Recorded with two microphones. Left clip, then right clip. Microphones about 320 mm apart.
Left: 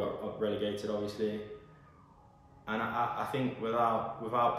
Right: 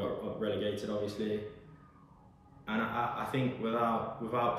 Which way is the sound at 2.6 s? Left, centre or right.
Centre.